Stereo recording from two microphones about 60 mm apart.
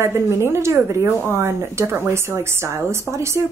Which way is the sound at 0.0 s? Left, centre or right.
Right.